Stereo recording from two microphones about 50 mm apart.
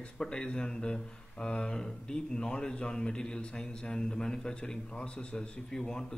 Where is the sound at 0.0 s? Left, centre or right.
Centre.